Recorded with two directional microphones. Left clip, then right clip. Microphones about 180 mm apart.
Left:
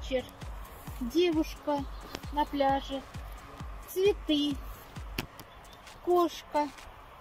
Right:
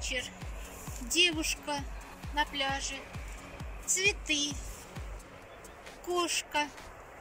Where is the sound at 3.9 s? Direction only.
40° left (ahead or behind).